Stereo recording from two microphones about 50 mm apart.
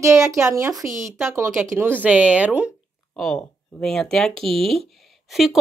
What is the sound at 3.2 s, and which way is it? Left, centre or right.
Speech, centre.